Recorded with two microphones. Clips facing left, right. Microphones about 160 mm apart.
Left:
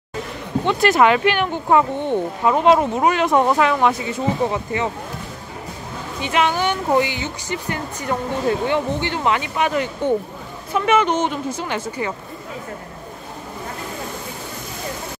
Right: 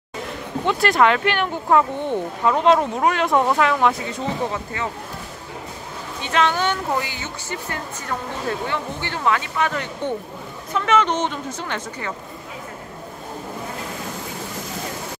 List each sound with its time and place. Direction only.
0.7 s speech: centre (ahead or behind)
6.2 s speech: 10° left (ahead or behind)